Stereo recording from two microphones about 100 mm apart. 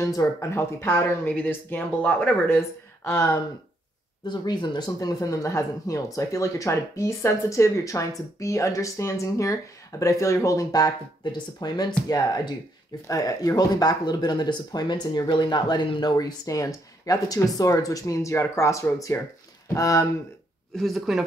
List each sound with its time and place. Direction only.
0.0 s speech: 35° left (ahead or behind)
4.3 s speech: 50° left (ahead or behind)
13.0 s speech: 35° left (ahead or behind)
20.7 s speech: centre (ahead or behind)